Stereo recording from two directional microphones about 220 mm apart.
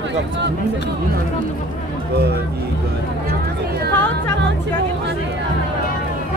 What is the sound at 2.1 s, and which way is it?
Speech, 45° right (ahead or behind).